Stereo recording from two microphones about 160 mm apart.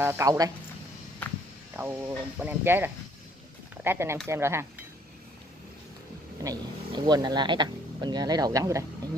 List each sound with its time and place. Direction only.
0.0 s speech: 15° right (ahead or behind)
1.8 s speech: 10° right (ahead or behind)
6.4 s speech: 25° right (ahead or behind)